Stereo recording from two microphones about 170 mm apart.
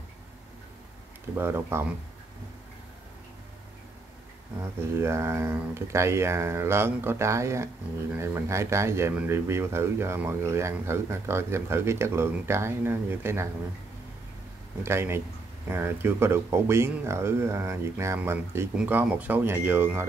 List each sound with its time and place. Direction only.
1.3 s speech: 15° right (ahead or behind)
4.9 s speech: 15° right (ahead or behind)
14.8 s speech: 15° right (ahead or behind)